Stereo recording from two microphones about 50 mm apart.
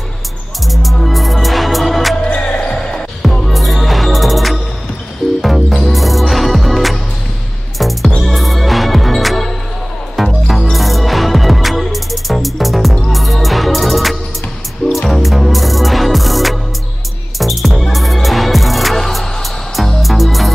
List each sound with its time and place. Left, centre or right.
1.0 s music: centre
2.1 s basketball bounce: left
3.4 s music: centre